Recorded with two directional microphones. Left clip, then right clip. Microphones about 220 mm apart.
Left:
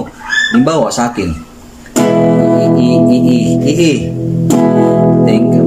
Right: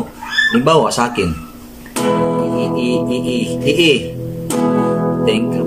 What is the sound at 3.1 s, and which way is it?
Speech, 5° right (ahead or behind).